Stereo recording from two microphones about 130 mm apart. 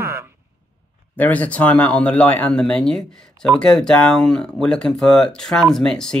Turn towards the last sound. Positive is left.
turn(degrees=5)  # may be behind; listen again after turning